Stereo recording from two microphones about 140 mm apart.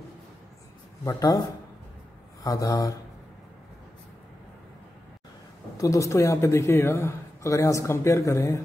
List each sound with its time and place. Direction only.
1.0 s a man's voice: 25° left (ahead or behind)
2.4 s a man's voice: 25° left (ahead or behind)
5.8 s a man's voice: 20° left (ahead or behind)